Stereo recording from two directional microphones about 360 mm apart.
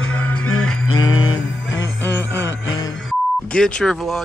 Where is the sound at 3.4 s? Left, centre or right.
Centre.